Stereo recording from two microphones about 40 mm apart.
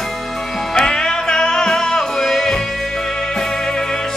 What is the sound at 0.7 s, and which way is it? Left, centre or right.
Music, centre.